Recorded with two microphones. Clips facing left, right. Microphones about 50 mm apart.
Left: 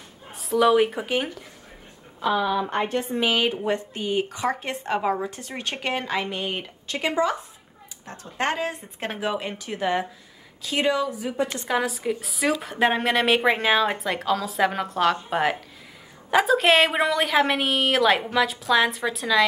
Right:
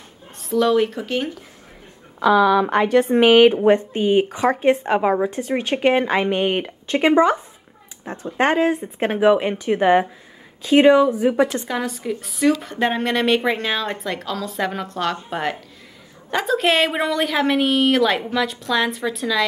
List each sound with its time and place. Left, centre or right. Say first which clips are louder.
0.3 s a woman's voice: right 1 dB; centre
2.1 s a woman's voice: right 8 dB; right
3.1 s speech: right 14 dB; right
3.6 s speech: right 10 dB; right
8.0 s speech: right 7 dB; centre
9.2 s speech: right 13 dB; right
11.6 s a woman's voice: even; centre